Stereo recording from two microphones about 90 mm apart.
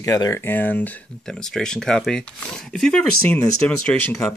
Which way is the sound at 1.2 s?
5° left (ahead or behind).